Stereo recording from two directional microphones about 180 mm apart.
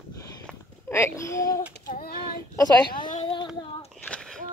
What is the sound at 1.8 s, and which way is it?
Child singing, 55° left (ahead or behind).